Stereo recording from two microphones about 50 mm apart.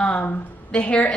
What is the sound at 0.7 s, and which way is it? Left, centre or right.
Speech, left.